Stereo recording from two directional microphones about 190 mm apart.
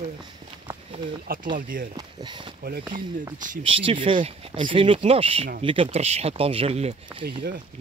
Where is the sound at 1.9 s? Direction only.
25° right (ahead or behind).